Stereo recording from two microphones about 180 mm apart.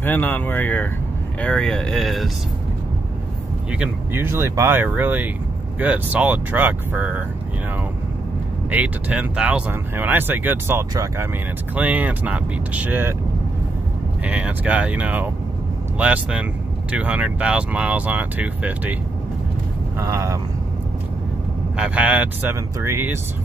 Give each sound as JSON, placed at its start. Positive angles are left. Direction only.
{"t": 0.0, "sound": "speech", "side_deg": 10}
{"t": 3.7, "sound": "speech", "side_deg": -10}
{"t": 8.6, "sound": "speech", "side_deg": -5}
{"t": 14.2, "sound": "speech", "side_deg": -10}
{"t": 20.0, "sound": "speech", "side_deg": -15}
{"t": 21.7, "sound": "speech", "side_deg": -5}